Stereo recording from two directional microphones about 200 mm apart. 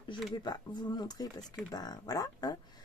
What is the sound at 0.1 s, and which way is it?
A woman's voice, 20° left (ahead or behind).